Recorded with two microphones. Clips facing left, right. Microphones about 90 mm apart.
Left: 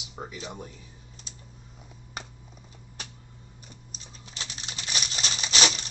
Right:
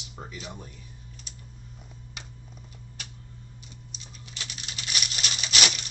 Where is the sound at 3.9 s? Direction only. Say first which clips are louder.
Left 1 dB; 35° left (ahead or behind).